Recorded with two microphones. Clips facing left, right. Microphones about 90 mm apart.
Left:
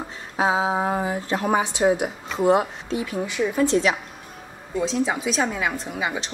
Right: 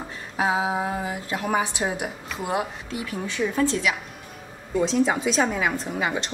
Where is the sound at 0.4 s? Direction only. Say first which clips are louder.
Left 2 dB; 25° left (ahead or behind).